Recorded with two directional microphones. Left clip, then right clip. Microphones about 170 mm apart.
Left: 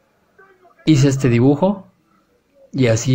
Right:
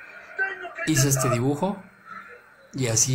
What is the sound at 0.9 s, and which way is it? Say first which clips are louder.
Speech: left 8 dB; 25° left (ahead or behind).